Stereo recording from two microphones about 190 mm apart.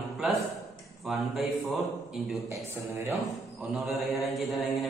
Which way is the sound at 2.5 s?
15° right (ahead or behind).